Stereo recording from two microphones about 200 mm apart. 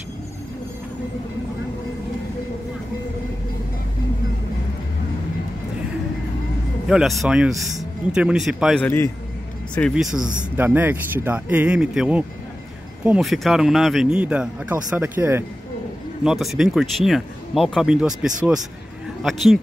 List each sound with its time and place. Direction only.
6.9 s speech: centre (ahead or behind)
8.8 s a man's voice: 10° left (ahead or behind)